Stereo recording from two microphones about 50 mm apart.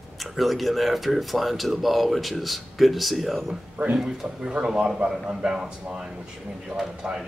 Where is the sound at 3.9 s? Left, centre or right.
Centre.